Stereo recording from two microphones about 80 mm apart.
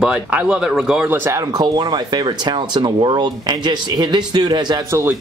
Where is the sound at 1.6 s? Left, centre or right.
Right.